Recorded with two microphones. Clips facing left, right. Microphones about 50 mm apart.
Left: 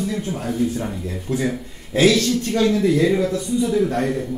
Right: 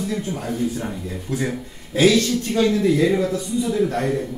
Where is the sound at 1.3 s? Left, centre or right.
Left.